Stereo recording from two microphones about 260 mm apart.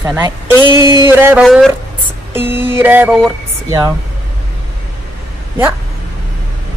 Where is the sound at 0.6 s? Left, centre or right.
Centre.